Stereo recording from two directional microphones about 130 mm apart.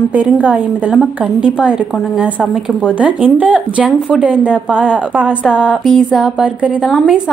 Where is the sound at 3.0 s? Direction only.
10° right (ahead or behind).